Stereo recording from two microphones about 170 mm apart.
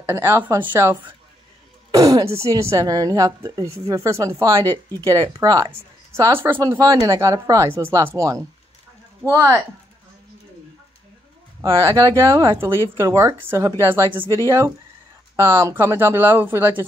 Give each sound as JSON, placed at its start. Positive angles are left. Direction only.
{"t": 0.0, "sound": "a woman's voice", "side_deg": -15}
{"t": 11.6, "sound": "speech", "side_deg": -20}